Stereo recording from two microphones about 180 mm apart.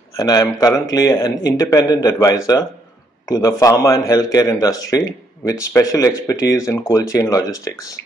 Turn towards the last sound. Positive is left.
turn(degrees=20)  # may be behind; listen again after turning